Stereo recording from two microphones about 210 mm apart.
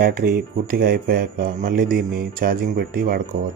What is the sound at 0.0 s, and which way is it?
Speech, 45° right (ahead or behind).